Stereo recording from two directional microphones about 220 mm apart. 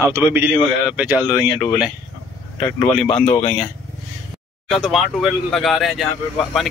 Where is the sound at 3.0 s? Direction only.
30° left (ahead or behind).